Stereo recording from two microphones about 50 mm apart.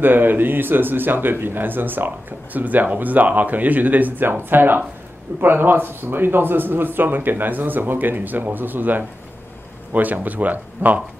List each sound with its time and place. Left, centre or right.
0.0 s a man's voice: right